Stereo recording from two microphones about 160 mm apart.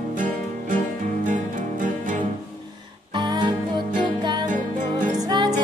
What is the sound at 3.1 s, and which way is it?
Music, 25° right (ahead or behind).